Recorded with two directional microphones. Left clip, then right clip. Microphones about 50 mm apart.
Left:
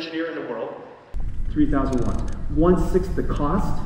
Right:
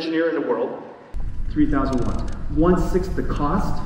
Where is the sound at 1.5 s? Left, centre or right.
Centre.